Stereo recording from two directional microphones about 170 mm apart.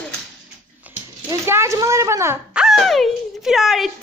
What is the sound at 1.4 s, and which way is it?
Speech, 15° right (ahead or behind).